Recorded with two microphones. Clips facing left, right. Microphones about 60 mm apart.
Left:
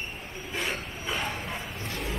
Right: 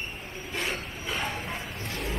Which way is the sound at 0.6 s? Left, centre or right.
Centre.